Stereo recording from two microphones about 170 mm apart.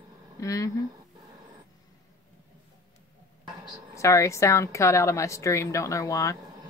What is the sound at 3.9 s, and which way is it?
A woman's voice, 15° left (ahead or behind).